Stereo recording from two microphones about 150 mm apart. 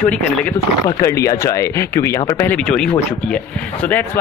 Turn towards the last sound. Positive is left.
turn(degrees=10)  # may be behind; listen again after turning